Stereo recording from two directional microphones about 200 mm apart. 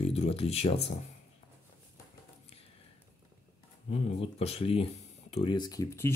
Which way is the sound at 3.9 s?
30° left (ahead or behind).